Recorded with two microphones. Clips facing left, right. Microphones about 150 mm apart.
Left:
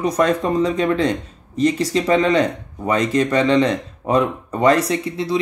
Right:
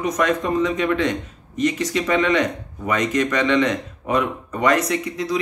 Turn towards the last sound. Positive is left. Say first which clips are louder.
# left 2 dB
turn(degrees=30)  # may be behind; listen again after turning